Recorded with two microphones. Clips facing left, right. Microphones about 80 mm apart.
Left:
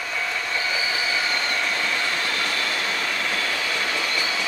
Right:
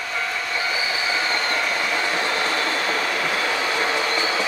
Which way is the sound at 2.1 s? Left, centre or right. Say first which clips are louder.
Right 4 dB; right.